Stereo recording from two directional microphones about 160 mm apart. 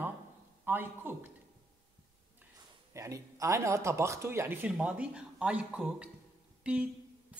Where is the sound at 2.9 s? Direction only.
20° right (ahead or behind).